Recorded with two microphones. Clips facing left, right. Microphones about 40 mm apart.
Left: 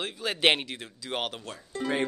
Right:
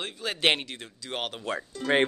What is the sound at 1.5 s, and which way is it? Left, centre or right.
Speech, right.